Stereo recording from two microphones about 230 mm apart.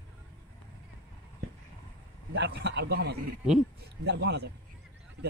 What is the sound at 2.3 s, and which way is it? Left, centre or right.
Speech, right.